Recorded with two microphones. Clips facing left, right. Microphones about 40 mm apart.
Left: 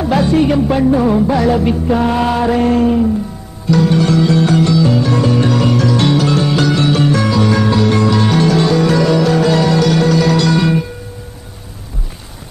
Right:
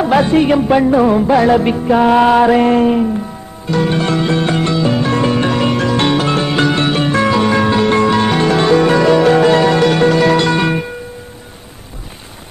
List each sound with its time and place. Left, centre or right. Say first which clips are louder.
0.0 s speech: right 1 dB; right
0.6 s music: right 2 dB; right
1.3 s music: right 2 dB; right